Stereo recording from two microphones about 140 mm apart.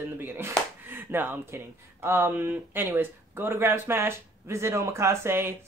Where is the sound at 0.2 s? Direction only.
15° right (ahead or behind).